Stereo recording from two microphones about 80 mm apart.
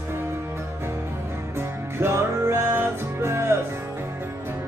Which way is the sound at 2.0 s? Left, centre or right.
Right.